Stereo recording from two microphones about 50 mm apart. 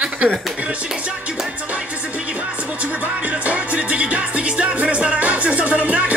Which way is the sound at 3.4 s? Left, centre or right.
Right.